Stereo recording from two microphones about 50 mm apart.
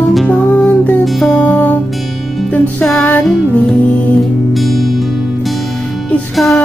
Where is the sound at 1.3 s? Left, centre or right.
Left.